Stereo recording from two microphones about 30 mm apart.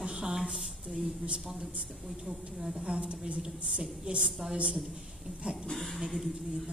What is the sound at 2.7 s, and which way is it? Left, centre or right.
A woman's voice, right.